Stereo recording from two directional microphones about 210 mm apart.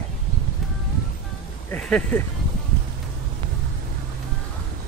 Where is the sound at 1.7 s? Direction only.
5° left (ahead or behind).